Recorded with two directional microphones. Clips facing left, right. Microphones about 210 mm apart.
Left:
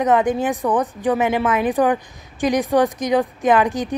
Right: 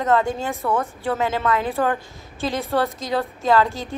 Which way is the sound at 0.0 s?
15° left (ahead or behind).